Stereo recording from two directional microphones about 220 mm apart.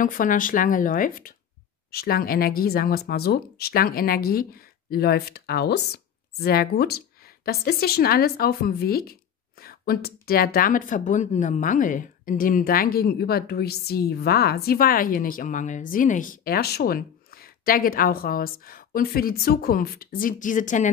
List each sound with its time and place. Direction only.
0.0 s speech: 35° left (ahead or behind)